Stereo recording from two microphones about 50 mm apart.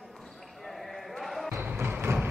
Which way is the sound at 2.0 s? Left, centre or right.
Right.